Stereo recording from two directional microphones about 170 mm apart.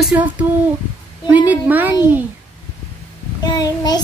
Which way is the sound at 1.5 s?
10° right (ahead or behind).